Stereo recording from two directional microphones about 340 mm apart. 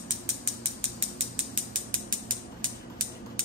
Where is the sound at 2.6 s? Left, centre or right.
Right.